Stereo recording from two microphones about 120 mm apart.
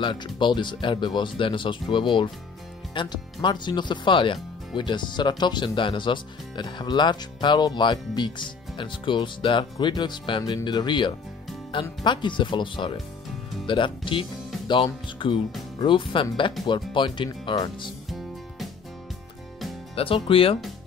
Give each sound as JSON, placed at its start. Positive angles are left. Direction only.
{"t": 0.0, "sound": "speech", "side_deg": 40}
{"t": 20.0, "sound": "speech", "side_deg": 50}